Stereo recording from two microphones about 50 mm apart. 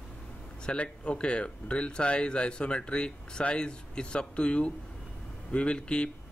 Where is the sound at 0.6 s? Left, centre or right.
Left.